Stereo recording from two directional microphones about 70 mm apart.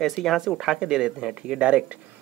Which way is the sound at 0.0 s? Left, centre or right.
Centre.